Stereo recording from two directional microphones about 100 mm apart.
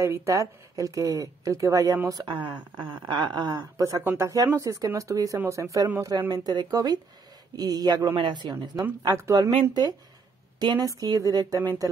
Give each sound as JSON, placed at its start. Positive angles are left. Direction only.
{"t": 0.0, "sound": "a woman's voice", "side_deg": -30}
{"t": 2.0, "sound": "speech", "side_deg": -45}
{"t": 4.0, "sound": "speech", "side_deg": -20}
{"t": 4.6, "sound": "a woman's voice", "side_deg": -35}
{"t": 9.1, "sound": "a woman's voice", "side_deg": -30}
{"t": 9.6, "sound": "a woman's voice", "side_deg": -50}